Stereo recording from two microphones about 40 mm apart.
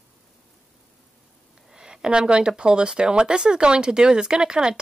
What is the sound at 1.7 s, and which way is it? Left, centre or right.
Speech, right.